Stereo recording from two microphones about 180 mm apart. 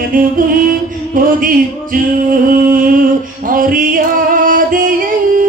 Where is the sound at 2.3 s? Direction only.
50° right (ahead or behind).